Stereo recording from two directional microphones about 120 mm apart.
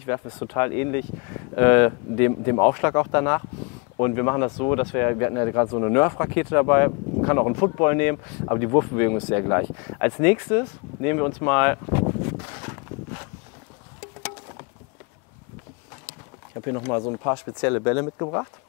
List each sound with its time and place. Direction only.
0.0 s speech: 20° left (ahead or behind)
16.6 s speech: 20° left (ahead or behind)